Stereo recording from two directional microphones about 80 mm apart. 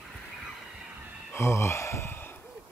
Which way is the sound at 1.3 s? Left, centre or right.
Left.